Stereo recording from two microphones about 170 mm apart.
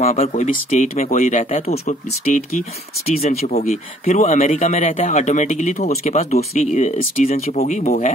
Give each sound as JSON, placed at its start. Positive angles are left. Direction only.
{"t": 0.1, "sound": "a man's voice", "side_deg": 40}